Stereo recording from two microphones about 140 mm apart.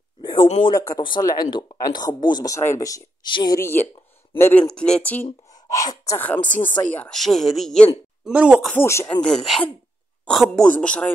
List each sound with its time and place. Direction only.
0.2 s a sound: 30° left (ahead or behind)
0.7 s speech: 25° left (ahead or behind)
3.3 s speech: 35° left (ahead or behind)
3.5 s speech: 15° left (ahead or behind)
5.7 s speech: 25° left (ahead or behind)
6.1 s speech: 10° left (ahead or behind)
8.3 s speech: 10° right (ahead or behind)
8.7 s speech: 20° left (ahead or behind)
9.2 s speech: centre (ahead or behind)